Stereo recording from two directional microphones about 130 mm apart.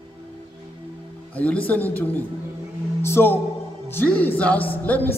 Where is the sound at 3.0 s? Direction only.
20° left (ahead or behind).